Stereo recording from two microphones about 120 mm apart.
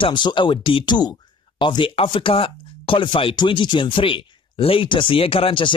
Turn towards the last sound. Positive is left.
turn(degrees=45)  # may be behind; listen again after turning